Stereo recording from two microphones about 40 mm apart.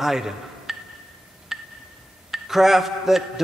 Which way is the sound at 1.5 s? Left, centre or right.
Centre.